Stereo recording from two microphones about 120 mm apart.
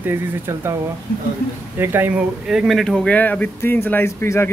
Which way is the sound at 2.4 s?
5° right (ahead or behind).